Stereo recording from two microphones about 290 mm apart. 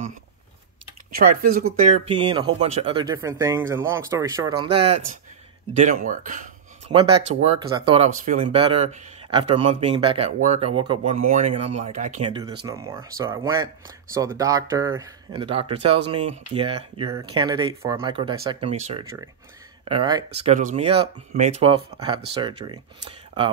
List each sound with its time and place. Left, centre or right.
1.1 s speech: right; by 4.6 s centre
5.7 s speech: right